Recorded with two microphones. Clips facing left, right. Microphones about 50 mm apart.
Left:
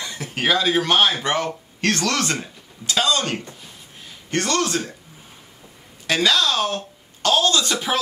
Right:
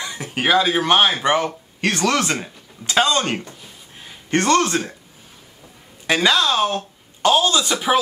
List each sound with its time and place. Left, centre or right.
0.0 s a man's voice: centre
2.9 s a man's voice: right
6.0 s speech: right